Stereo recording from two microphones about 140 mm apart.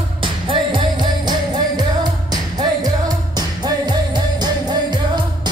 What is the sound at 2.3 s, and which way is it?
Music, 30° right (ahead or behind).